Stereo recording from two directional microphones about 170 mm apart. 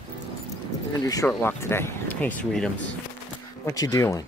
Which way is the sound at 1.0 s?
20° left (ahead or behind).